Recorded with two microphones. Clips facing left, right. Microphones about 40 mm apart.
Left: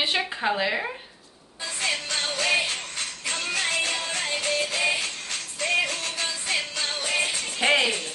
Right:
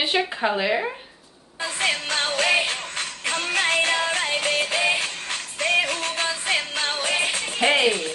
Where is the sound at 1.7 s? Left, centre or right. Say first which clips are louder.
Right 4 dB; right.